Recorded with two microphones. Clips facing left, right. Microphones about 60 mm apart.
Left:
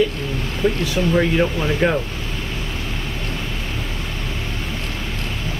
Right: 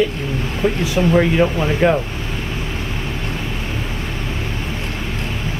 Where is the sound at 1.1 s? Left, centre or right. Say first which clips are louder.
Right 2 dB; centre.